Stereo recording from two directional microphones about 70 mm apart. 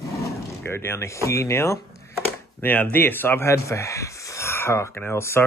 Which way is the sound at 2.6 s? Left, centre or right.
Left.